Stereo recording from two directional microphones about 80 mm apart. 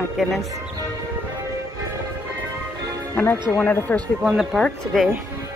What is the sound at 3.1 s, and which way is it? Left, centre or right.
Speech, left.